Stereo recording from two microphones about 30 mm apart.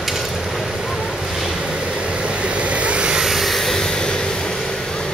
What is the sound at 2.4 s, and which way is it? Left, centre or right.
Vehicle, right.